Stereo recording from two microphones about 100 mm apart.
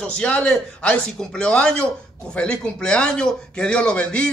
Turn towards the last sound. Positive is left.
turn(degrees=10)  # may be behind; listen again after turning